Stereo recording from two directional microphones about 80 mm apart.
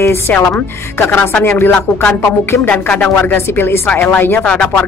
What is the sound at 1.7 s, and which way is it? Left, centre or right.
Speech, centre.